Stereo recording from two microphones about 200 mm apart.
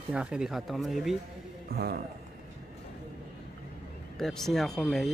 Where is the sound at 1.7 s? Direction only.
50° right (ahead or behind).